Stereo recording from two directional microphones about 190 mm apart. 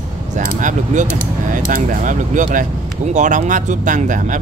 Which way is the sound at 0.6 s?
40° right (ahead or behind).